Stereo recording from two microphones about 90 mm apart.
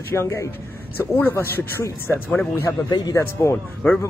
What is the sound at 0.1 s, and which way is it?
Speech, 30° left (ahead or behind).